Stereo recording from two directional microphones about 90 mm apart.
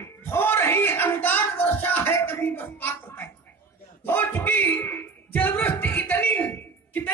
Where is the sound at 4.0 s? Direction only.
20° left (ahead or behind).